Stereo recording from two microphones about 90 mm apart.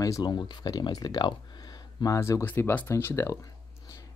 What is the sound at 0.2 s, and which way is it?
Speech, 55° left (ahead or behind).